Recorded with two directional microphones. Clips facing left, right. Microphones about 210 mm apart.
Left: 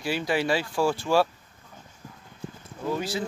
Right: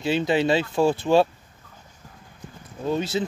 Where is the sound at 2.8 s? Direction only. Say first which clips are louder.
Right 4 dB; 25° right (ahead or behind).